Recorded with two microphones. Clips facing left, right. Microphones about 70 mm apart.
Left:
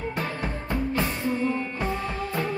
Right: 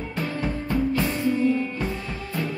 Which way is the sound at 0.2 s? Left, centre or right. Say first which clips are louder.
Right 3 dB; left.